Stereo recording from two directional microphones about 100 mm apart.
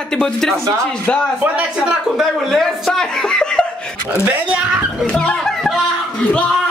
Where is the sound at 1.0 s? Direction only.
10° left (ahead or behind).